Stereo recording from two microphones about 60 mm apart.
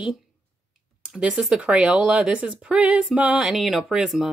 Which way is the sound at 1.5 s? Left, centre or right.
Centre.